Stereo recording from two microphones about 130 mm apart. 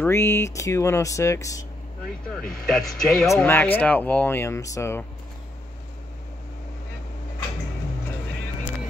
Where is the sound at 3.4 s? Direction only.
15° left (ahead or behind).